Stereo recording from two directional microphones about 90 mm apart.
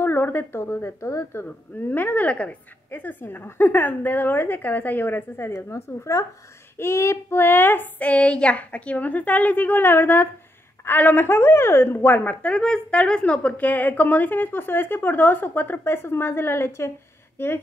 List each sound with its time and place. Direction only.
0.0 s a woman's voice: 25° left (ahead or behind)